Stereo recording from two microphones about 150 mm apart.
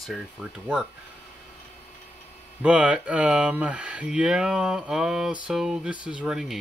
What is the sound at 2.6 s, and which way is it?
Speech, 10° right (ahead or behind).